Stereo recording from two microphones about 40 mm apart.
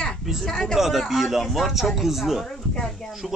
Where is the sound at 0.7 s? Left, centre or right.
Centre.